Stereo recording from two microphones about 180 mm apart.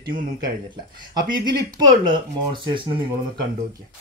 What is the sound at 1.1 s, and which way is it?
Speech, 25° right (ahead or behind).